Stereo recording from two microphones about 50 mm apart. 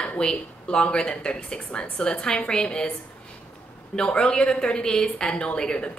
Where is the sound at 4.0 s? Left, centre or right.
Centre.